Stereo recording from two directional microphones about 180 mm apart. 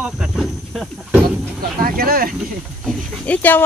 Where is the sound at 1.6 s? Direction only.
55° right (ahead or behind).